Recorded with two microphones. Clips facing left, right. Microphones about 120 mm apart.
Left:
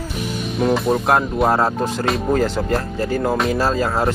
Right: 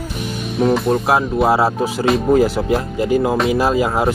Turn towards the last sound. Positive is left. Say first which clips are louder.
# right 3 dB
turn(degrees=-15)  # may be behind; listen again after turning